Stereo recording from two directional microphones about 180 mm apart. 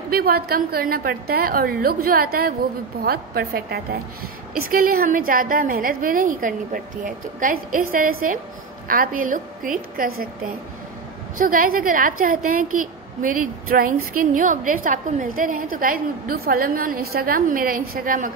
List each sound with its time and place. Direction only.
0.1 s a woman's voice: 60° right (ahead or behind)
11.3 s a woman's voice: 50° right (ahead or behind)